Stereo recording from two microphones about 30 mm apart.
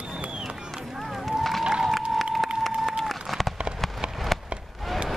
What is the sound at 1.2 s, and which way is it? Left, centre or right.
Run, centre.